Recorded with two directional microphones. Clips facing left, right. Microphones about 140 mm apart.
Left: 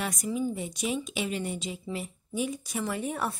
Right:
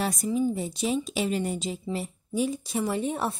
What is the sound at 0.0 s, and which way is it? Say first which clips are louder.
A woman's voice: right 4 dB; 30° right (ahead or behind).